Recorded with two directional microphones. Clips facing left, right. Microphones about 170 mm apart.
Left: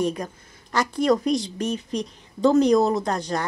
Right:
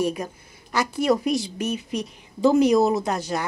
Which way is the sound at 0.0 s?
5° right (ahead or behind).